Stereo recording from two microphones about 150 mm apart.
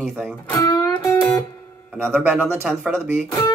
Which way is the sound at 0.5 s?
25° left (ahead or behind).